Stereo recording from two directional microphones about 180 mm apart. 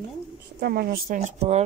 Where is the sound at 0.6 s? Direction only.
60° right (ahead or behind).